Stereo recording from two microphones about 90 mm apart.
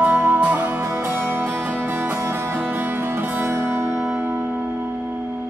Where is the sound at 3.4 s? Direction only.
25° right (ahead or behind).